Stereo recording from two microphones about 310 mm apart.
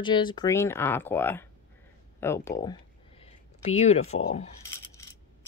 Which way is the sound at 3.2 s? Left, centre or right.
Left.